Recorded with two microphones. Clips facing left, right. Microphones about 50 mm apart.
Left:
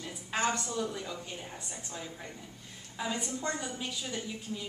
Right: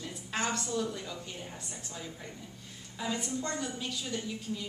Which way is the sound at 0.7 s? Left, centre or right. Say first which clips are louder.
Right 1 dB; centre.